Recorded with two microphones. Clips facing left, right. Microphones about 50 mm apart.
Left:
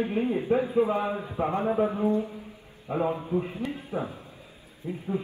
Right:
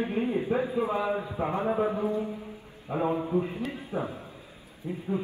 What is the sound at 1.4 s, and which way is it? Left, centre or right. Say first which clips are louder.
Speech: left 5 dB; centre.